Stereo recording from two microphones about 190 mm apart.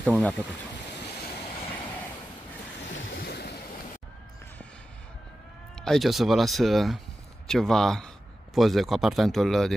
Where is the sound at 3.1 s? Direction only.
55° left (ahead or behind).